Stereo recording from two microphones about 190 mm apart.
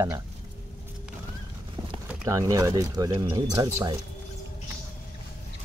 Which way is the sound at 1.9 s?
20° right (ahead or behind).